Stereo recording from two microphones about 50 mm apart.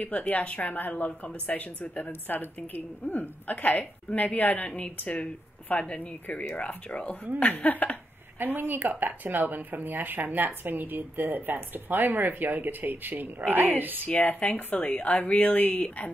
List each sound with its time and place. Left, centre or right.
0.0 s a woman's voice: left
5.9 s a woman's voice: left
8.4 s speech: right
14.0 s a woman's voice: left